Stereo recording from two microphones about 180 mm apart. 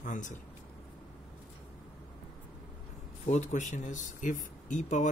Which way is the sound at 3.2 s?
40° left (ahead or behind).